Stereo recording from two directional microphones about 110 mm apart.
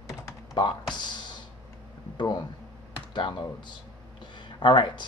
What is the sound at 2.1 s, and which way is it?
Speech, 40° left (ahead or behind).